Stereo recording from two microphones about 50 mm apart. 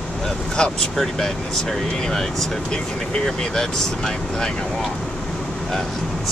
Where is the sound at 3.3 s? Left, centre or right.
Centre.